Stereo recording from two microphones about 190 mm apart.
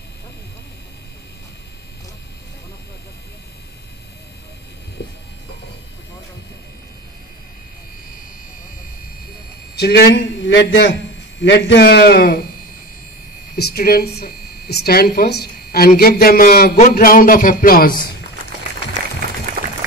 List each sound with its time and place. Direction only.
9.8 s a man's voice: 60° left (ahead or behind)
13.6 s a woman's voice: 55° left (ahead or behind)
16.0 s a sound: 55° left (ahead or behind)